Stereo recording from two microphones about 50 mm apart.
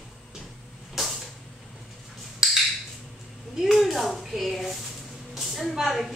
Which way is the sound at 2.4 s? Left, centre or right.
Centre.